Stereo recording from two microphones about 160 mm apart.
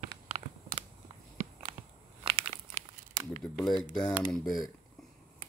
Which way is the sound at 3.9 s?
5° left (ahead or behind).